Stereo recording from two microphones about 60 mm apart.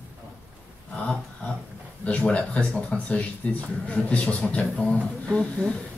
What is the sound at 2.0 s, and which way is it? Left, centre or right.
Speech, left.